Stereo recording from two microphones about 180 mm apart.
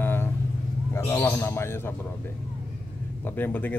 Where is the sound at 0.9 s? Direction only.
15° left (ahead or behind).